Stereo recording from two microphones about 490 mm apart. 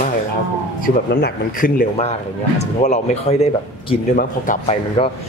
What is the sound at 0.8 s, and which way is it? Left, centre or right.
A man's voice, centre.